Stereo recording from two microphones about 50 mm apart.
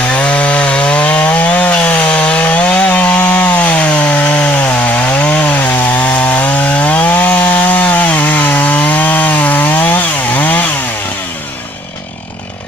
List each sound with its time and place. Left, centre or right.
0.1 s wood: left
2.8 s chainsaw: left
5.7 s chainsaw: left